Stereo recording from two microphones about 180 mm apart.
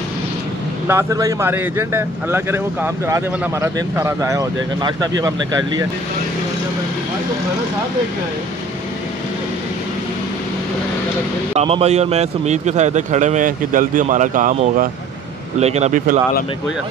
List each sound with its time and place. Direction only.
0.8 s speech: 15° right (ahead or behind)
11.5 s a man's voice: 35° right (ahead or behind)